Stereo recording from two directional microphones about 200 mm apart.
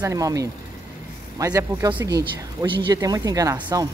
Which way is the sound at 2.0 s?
20° right (ahead or behind).